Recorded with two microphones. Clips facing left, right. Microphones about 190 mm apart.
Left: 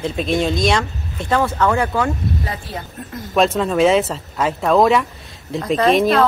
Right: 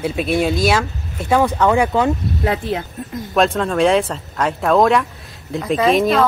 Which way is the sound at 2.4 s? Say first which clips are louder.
Right 9 dB; 70° right (ahead or behind).